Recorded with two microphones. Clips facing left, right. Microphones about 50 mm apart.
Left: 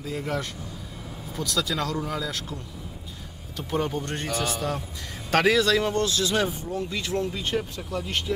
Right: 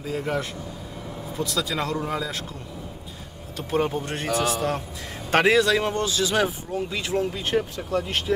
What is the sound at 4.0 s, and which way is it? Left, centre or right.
Speech, centre.